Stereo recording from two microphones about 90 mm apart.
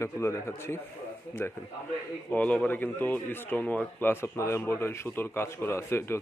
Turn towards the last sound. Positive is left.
turn(degrees=30)  # may be behind; listen again after turning